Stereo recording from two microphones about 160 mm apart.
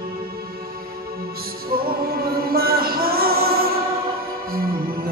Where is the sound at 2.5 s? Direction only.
70° right (ahead or behind).